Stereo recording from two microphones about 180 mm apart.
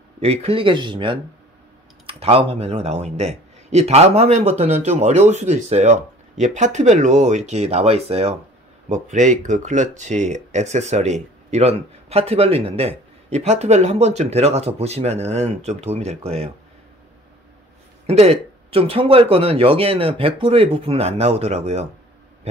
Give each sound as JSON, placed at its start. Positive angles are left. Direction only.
{"t": 0.2, "sound": "speech", "side_deg": -35}
{"t": 18.0, "sound": "speech", "side_deg": -35}